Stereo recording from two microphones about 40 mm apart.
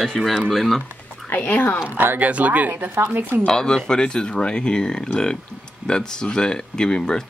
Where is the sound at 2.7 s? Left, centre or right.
Right.